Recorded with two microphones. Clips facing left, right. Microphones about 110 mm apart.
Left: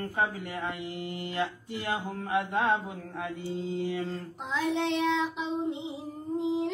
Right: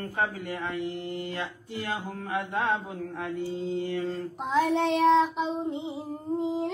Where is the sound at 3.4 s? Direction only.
Centre (ahead or behind).